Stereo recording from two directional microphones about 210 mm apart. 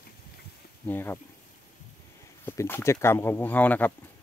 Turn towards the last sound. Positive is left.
turn(degrees=10)  # may be behind; listen again after turning